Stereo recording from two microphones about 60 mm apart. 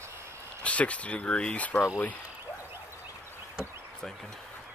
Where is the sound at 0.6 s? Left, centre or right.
Left.